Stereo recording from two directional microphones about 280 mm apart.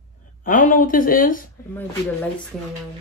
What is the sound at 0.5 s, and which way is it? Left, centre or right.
Speech, left.